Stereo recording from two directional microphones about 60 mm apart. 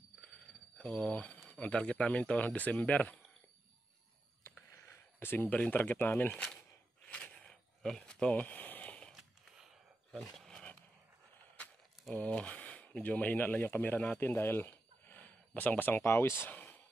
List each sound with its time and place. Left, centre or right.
0.7 s speech: left
4.8 s a sound: left
5.7 s speech: left
6.3 s a sound: centre
8.4 s a sound: left
10.1 s dog: centre
12.2 s speech: left
13.9 s speech: left
14.2 s speech: left